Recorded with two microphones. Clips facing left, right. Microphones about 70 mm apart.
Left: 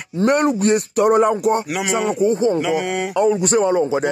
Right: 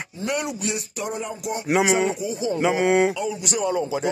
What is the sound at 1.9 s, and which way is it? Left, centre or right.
Speech, left.